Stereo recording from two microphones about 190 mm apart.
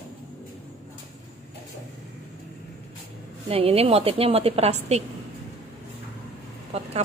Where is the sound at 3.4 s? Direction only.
30° right (ahead or behind).